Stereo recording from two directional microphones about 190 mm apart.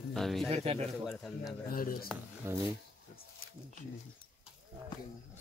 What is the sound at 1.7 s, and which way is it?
Speech, 50° left (ahead or behind).